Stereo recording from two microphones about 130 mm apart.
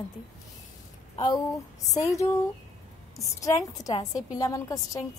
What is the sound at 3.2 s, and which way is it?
A woman's voice, 25° left (ahead or behind).